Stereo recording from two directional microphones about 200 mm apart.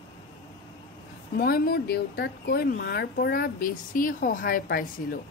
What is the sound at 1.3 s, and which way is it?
A woman's voice, 50° left (ahead or behind).